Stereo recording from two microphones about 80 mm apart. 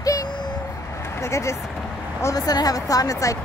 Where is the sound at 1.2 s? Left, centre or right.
Left.